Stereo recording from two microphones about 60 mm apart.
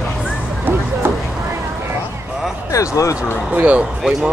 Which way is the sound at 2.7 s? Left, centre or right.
Left.